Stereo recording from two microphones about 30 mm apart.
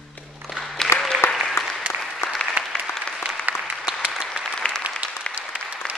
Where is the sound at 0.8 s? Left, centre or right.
Centre.